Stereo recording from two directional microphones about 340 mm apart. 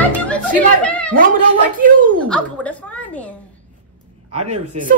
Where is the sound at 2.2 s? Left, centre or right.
Centre.